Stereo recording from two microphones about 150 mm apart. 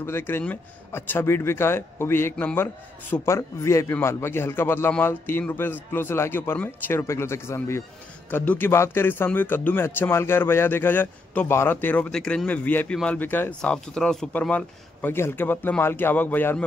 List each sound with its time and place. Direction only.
0.0 s speech: 15° left (ahead or behind)